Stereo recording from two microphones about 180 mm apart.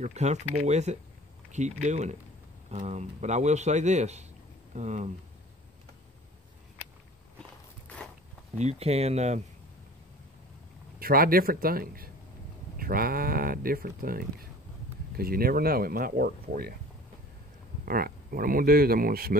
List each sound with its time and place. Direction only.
0.0 s a man's voice: 40° right (ahead or behind)
8.5 s a man's voice: 35° right (ahead or behind)
11.0 s speech: 55° right (ahead or behind)
17.8 s speech: 55° right (ahead or behind)